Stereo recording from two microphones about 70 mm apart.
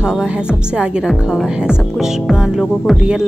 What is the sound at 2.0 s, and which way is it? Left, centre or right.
Music, centre.